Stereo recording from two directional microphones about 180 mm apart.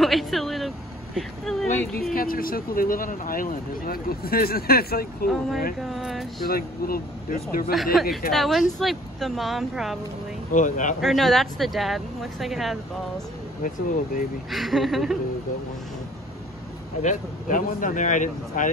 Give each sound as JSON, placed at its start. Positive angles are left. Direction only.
{"t": 0.0, "sound": "vehicle", "side_deg": 0}
{"t": 2.1, "sound": "speech", "side_deg": 55}
{"t": 5.8, "sound": "speech", "side_deg": 0}
{"t": 6.4, "sound": "speech", "side_deg": 55}
{"t": 7.7, "sound": "speech", "side_deg": 0}
{"t": 10.5, "sound": "speech", "side_deg": 45}
{"t": 11.0, "sound": "speech", "side_deg": 0}
{"t": 13.6, "sound": "speech", "side_deg": 50}
{"t": 14.5, "sound": "speech", "side_deg": 0}
{"t": 17.0, "sound": "speech", "side_deg": 45}